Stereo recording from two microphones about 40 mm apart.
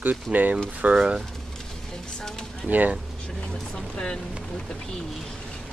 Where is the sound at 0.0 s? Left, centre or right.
Right.